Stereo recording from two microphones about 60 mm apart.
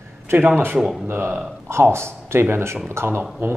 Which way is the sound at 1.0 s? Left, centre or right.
Right.